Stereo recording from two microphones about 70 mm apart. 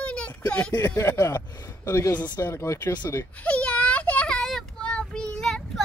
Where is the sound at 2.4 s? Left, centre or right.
Left.